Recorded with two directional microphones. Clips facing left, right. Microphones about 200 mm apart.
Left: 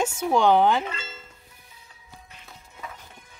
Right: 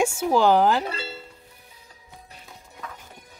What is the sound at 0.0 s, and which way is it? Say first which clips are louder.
Speech: right 1 dB; 10° right (ahead or behind).